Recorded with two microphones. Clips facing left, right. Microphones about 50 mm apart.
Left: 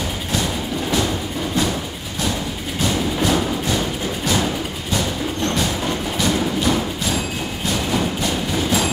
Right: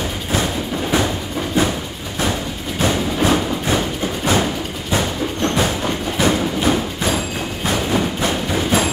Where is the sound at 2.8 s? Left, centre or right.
Right.